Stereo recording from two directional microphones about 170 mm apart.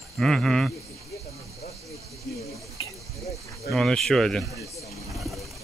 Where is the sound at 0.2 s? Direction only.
5° left (ahead or behind).